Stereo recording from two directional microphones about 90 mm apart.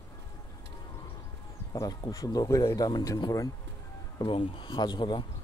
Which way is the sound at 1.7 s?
40° left (ahead or behind).